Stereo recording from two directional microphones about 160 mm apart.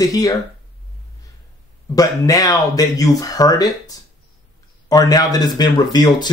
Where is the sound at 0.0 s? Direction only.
20° left (ahead or behind).